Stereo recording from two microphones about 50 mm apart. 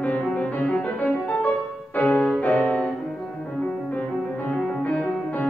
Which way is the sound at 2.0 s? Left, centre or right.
Left.